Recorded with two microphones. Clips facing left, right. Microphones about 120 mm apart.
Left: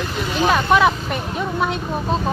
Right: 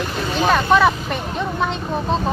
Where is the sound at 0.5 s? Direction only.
10° left (ahead or behind).